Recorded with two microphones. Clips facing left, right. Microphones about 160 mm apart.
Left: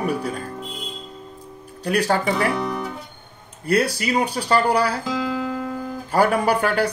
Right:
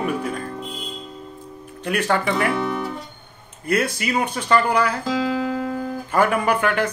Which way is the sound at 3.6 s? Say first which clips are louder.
Left 2 dB; 35° left (ahead or behind).